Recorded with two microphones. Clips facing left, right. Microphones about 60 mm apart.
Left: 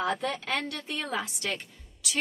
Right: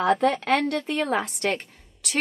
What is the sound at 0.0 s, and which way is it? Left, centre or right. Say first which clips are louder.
A woman's voice: right 9 dB; right.